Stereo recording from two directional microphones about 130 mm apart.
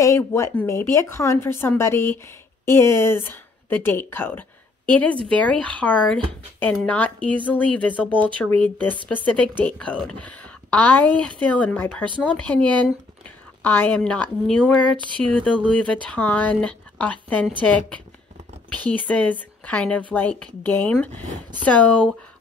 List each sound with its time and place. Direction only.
0.0 s speech: 20° left (ahead or behind)
8.0 s speech: 10° right (ahead or behind)
8.5 s speech: 15° left (ahead or behind)